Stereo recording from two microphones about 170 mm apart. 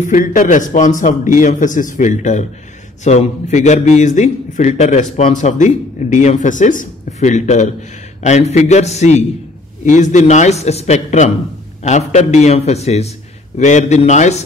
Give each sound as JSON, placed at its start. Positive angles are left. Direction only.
{"t": 0.0, "sound": "a man's voice", "side_deg": 50}